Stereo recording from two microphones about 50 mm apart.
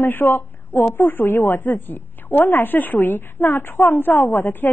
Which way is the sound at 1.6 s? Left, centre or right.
Left.